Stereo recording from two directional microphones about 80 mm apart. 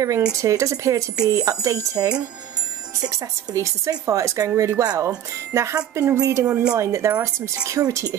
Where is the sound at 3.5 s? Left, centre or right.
Right.